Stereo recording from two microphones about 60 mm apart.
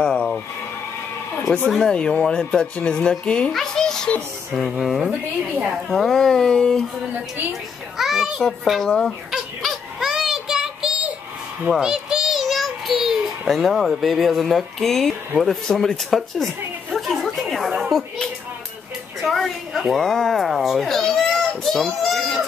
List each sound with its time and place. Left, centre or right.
0.0 s a sound: centre
1.8 s speech: centre
3.5 s a sound: centre
4.6 s speech: centre
8.0 s speech: centre
9.3 s child singing: centre
11.8 s a sound: centre
19.2 s speech: centre
21.6 s baby cry: centre